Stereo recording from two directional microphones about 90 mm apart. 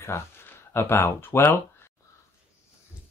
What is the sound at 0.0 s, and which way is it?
Speech, 30° left (ahead or behind).